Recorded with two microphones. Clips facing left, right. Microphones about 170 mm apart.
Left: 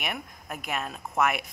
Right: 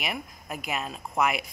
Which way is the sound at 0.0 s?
Centre (ahead or behind).